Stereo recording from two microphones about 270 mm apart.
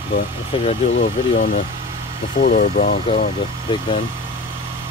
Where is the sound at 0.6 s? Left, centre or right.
Left.